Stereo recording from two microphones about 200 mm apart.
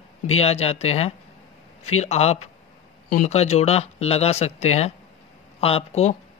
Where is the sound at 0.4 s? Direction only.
30° left (ahead or behind).